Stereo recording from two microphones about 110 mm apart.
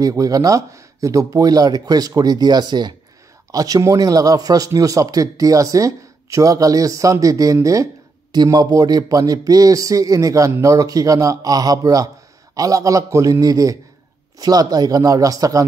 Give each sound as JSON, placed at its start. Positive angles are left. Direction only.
{"t": 0.0, "sound": "speech", "side_deg": -35}